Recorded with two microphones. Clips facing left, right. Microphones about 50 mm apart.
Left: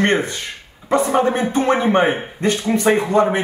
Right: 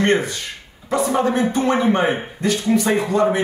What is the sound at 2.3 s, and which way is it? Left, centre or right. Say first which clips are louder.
Speech: left 2 dB; left.